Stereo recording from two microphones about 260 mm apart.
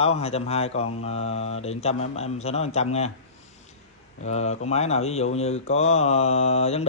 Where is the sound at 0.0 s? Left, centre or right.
Left.